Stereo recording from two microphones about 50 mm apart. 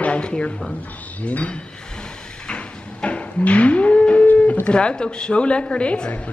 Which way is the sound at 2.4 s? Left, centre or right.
Left.